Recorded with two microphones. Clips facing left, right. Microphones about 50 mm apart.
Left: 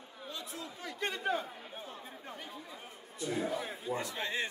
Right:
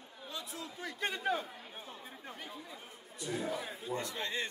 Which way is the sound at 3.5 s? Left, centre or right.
Centre.